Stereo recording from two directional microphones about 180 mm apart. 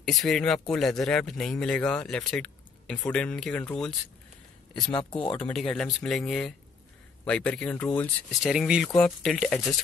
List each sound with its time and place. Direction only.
0.0 s speech: centre (ahead or behind)
4.7 s speech: 25° left (ahead or behind)
5.4 s speech: 5° left (ahead or behind)